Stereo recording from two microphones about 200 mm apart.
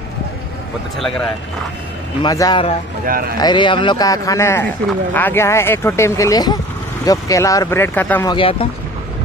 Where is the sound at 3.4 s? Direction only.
20° left (ahead or behind).